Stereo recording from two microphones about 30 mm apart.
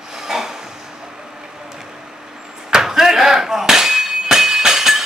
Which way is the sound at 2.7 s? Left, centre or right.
Centre.